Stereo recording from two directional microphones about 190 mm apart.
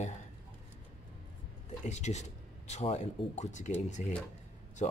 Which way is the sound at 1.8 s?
35° left (ahead or behind).